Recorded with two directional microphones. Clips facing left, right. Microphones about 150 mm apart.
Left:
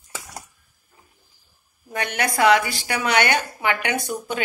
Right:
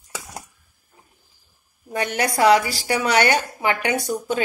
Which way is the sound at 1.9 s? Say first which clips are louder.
Right 2 dB; 35° right (ahead or behind).